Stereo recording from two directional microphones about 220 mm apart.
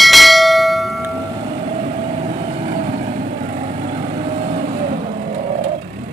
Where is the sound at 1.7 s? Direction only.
30° right (ahead or behind).